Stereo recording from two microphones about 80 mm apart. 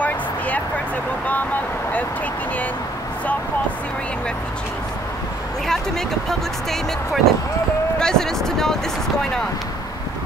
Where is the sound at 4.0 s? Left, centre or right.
Centre.